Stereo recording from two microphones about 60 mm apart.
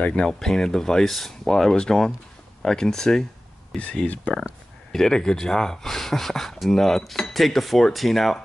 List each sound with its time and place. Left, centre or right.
0.0 s speech: centre
4.9 s speech: centre